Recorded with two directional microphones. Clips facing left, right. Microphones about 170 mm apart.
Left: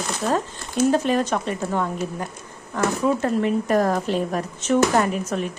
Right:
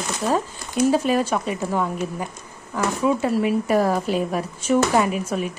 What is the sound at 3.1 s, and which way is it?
Speech, 10° right (ahead or behind).